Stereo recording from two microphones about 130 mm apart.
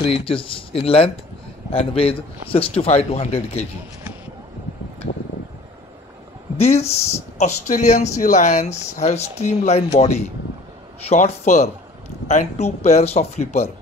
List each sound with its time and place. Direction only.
0.0 s speech: 45° left (ahead or behind)
6.6 s speech: 55° left (ahead or behind)